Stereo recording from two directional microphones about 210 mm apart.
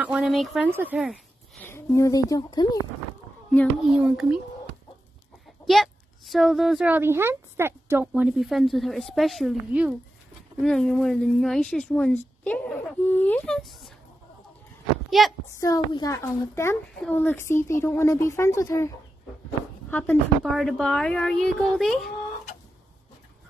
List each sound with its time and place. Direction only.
0.0 s a child's voice: 5° right (ahead or behind)
1.6 s a woman's voice: 10° left (ahead or behind)
3.5 s a child's voice: 5° right (ahead or behind)
5.7 s a child's voice: centre (ahead or behind)
15.0 s a woman's voice: centre (ahead or behind)
15.6 s a woman's voice: 15° left (ahead or behind)
19.9 s a child's voice: 5° left (ahead or behind)